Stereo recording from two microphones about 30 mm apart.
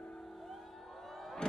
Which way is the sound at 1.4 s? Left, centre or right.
Left.